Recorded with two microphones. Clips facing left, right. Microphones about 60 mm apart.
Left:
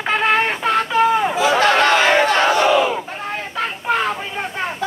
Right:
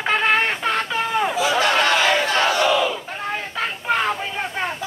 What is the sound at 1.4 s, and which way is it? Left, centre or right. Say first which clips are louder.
Crowd: left 3 dB; left.